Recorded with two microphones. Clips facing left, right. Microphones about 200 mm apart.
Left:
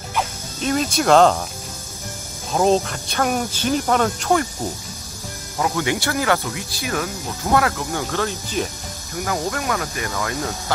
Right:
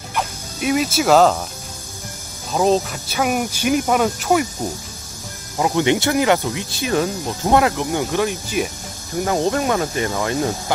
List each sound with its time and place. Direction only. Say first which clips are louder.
0.1 s music: even; 10° right (ahead or behind)
2.5 s speech: even; centre (ahead or behind)
5.6 s speech: right 5 dB; 20° right (ahead or behind)
9.2 s speech: right 6 dB; 25° right (ahead or behind)